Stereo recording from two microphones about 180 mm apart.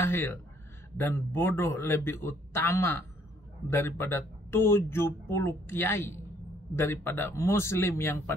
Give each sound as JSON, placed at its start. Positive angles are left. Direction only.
{"t": 0.0, "sound": "speech", "side_deg": 10}